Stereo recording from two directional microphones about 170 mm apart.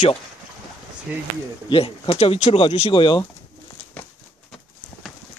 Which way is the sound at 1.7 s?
30° left (ahead or behind).